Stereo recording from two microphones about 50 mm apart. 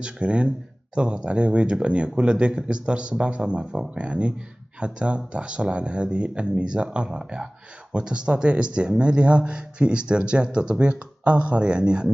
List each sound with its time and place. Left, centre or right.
0.0 s speech: right